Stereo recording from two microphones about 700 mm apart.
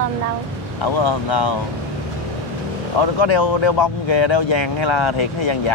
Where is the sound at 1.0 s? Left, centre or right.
Left.